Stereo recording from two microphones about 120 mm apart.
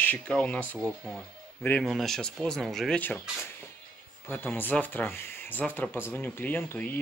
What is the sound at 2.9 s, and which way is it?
Speech, 15° left (ahead or behind).